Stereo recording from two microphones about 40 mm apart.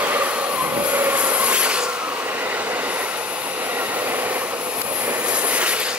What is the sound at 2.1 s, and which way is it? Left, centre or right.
Train, right.